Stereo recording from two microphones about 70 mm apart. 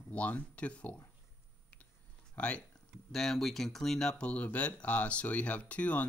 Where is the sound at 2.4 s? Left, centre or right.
Centre.